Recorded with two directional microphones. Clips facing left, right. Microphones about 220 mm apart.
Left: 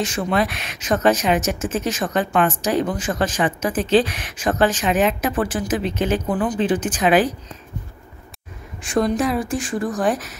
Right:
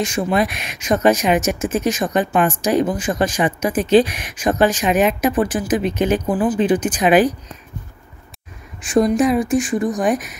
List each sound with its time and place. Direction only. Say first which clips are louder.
0.0 s speech: right 2 dB; 15° right (ahead or behind)
8.9 s speech: right 4 dB; 20° right (ahead or behind)